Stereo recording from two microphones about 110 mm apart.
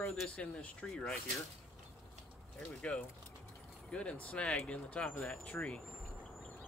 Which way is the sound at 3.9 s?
10° left (ahead or behind).